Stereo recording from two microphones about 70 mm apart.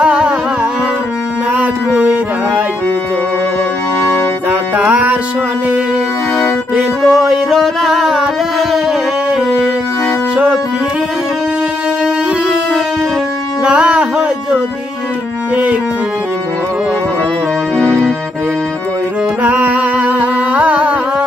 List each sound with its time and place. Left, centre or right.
0.0 s music: centre
1.5 s music: centre
4.1 s music: right
7.0 s music: centre
10.3 s music: centre
13.7 s music: centre
19.4 s music: right